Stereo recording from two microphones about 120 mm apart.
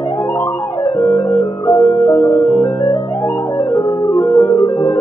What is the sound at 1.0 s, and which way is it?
Music, 20° left (ahead or behind).